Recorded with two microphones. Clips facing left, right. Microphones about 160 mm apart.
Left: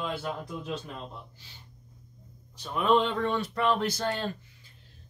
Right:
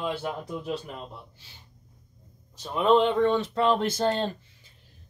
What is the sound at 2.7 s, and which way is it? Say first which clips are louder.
Speech: right 4 dB; 25° right (ahead or behind).